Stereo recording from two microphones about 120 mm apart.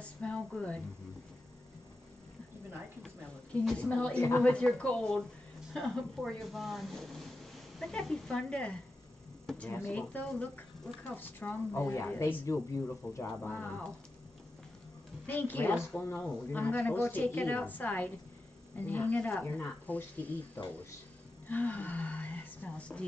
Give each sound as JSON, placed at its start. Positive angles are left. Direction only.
{"t": 0.2, "sound": "a woman's voice", "side_deg": 10}
{"t": 3.6, "sound": "a woman's voice", "side_deg": 10}
{"t": 15.2, "sound": "a woman's voice", "side_deg": 15}